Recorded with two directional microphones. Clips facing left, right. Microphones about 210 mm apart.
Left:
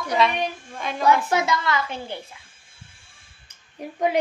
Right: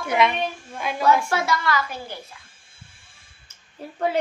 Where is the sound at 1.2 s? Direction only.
20° left (ahead or behind).